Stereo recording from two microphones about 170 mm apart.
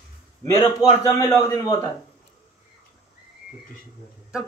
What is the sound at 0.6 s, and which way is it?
Speech, 20° left (ahead or behind).